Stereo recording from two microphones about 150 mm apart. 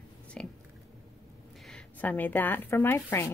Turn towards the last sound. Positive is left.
turn(degrees=15)  # may be behind; listen again after turning